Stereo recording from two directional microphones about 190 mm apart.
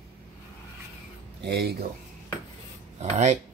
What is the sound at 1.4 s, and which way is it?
Speech, 60° right (ahead or behind).